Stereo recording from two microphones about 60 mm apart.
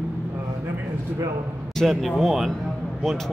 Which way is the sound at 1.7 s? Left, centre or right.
Centre.